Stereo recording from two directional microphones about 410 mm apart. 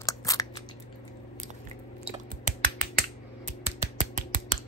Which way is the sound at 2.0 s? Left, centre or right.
Centre.